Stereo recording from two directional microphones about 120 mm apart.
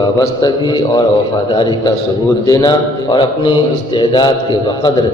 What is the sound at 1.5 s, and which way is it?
Speech, 40° left (ahead or behind).